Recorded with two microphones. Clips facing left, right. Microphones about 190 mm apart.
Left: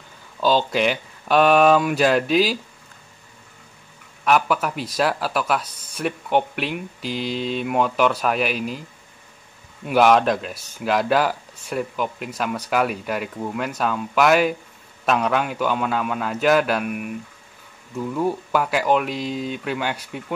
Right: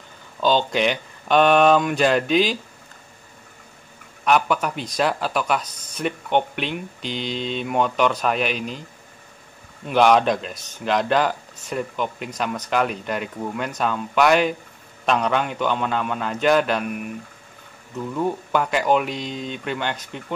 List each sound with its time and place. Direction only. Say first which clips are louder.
0.4 s speech: even; 5° left (ahead or behind)
4.2 s speech: even; 5° left (ahead or behind)
9.8 s speech: even; 5° left (ahead or behind)